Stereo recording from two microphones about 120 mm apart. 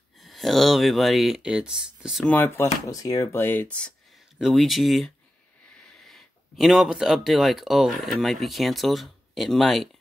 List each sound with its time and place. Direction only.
0.2 s speech: centre (ahead or behind)
2.2 s speech: 15° left (ahead or behind)
4.4 s speech: centre (ahead or behind)